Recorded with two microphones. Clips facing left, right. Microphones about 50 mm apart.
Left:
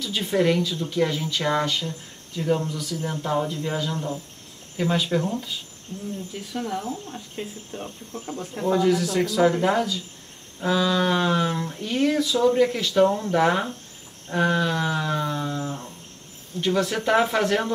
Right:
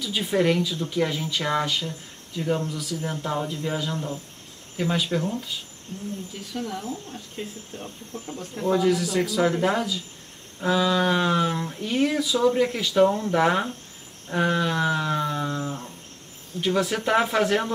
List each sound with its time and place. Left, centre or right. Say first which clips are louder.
0.0 s speech: left 1 dB; centre
6.5 s speech: left 2 dB; centre
8.6 s speech: left 1 dB; centre